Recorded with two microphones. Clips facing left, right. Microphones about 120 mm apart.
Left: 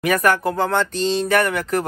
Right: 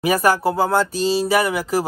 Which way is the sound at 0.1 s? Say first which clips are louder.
Even; 30° right (ahead or behind).